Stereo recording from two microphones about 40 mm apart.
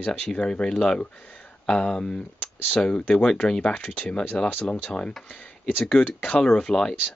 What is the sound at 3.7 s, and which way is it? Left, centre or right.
Speech, left.